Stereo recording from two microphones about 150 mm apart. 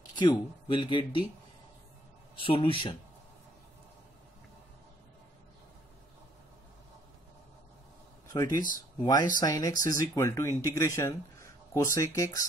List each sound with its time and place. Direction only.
0.1 s speech: 30° left (ahead or behind)
2.3 s speech: 35° left (ahead or behind)
8.3 s speech: 25° left (ahead or behind)